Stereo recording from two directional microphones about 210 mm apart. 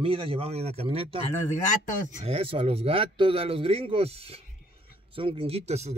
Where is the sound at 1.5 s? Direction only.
35° left (ahead or behind).